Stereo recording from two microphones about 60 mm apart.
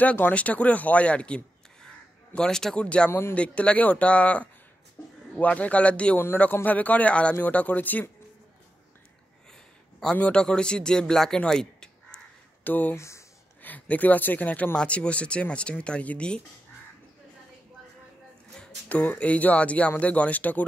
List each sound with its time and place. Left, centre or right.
0.0 s a man's voice: left
3.1 s a man's voice: left
3.3 s speech: centre
5.0 s a sound: left
5.4 s speech: left
9.5 s a sound: centre
10.1 s speech: centre
12.6 s speech: left
12.9 s speech: left
13.6 s speech: left
18.9 s speech: left